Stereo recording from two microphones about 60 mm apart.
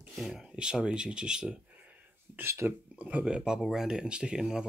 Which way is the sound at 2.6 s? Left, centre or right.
Centre.